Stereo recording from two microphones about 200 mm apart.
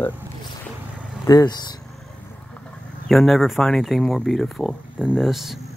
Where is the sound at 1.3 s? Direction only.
20° left (ahead or behind).